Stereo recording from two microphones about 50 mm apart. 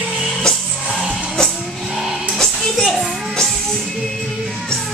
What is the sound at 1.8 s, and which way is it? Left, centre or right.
Music, centre.